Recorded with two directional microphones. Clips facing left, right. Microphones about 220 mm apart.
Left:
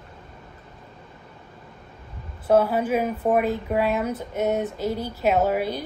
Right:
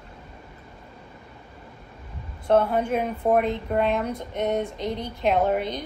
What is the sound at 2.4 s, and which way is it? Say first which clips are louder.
A woman's voice: left 1 dB; 5° left (ahead or behind).